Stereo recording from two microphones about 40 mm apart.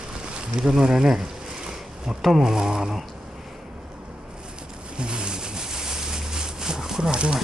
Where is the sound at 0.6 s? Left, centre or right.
Centre.